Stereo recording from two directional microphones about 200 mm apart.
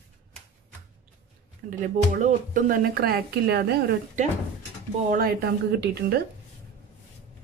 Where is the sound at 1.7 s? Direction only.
40° right (ahead or behind).